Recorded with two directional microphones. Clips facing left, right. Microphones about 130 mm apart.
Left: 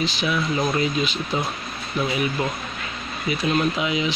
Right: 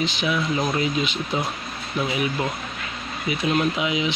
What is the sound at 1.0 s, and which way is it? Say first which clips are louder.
Speech: even; 20° right (ahead or behind).